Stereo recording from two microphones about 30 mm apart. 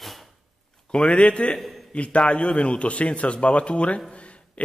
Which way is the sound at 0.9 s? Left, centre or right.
Left.